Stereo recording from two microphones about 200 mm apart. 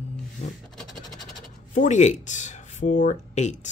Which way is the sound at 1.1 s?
Centre (ahead or behind).